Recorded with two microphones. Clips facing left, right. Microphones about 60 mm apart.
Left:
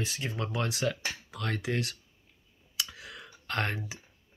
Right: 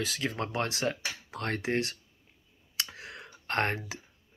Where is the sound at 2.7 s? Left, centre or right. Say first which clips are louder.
Even; right.